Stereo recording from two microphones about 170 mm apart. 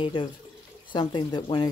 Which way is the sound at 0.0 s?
25° left (ahead or behind).